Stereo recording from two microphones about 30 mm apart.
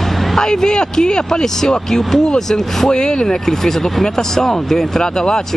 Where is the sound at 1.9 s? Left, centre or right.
Centre.